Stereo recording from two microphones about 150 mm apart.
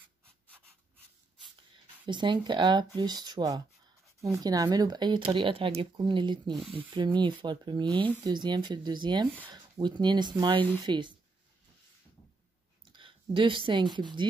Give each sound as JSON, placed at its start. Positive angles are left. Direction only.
{"t": 2.0, "sound": "speech", "side_deg": -30}
{"t": 6.5, "sound": "speech", "side_deg": 0}
{"t": 6.9, "sound": "speech", "side_deg": -30}
{"t": 12.8, "sound": "speech", "side_deg": -35}